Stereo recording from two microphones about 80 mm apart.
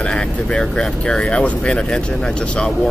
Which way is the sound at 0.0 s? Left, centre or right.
Centre.